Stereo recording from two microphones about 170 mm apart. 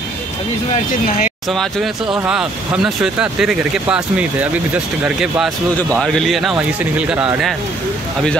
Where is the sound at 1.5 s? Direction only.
Centre (ahead or behind).